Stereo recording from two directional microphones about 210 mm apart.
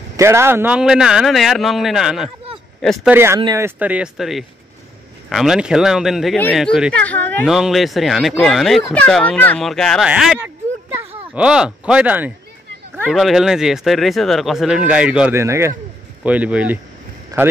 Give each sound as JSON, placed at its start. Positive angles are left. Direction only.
{"t": 0.2, "sound": "speech", "side_deg": -10}